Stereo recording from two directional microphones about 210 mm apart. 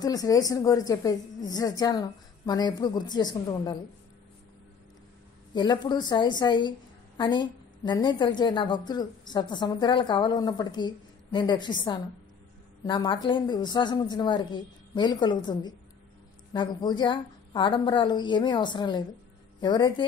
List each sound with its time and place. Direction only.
0.0 s a woman's voice: 15° left (ahead or behind)
5.5 s a woman's voice: 20° left (ahead or behind)